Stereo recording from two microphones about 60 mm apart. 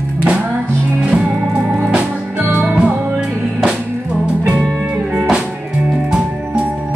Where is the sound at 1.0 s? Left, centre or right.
Centre.